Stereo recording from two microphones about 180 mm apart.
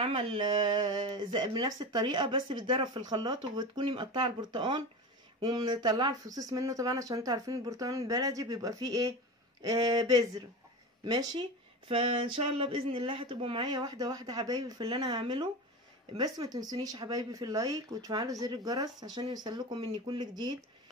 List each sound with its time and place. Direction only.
0.0 s speech: 30° right (ahead or behind)